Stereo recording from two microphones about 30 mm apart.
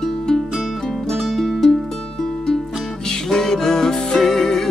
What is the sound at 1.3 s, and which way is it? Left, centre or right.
Music, centre.